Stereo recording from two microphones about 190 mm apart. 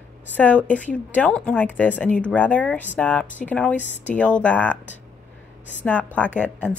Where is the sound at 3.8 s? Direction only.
40° left (ahead or behind).